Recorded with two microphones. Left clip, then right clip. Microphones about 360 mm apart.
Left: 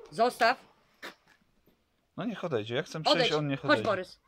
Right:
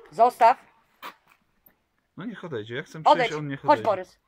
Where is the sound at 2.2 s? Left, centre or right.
Centre.